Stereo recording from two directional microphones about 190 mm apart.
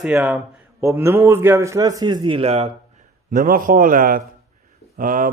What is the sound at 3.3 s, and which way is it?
A man's voice, 45° right (ahead or behind).